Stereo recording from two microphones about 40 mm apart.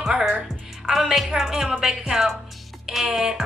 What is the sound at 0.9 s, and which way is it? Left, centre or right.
A woman's voice, centre.